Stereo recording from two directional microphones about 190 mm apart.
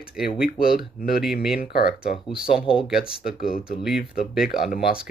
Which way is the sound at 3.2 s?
50° left (ahead or behind).